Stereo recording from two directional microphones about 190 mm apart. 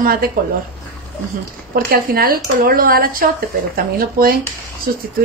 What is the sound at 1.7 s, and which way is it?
A woman's voice, 50° right (ahead or behind).